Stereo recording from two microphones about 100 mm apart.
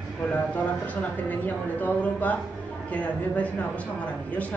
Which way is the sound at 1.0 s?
15° left (ahead or behind).